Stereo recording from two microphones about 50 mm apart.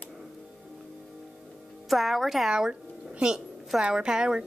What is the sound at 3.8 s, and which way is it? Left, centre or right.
Speech, centre.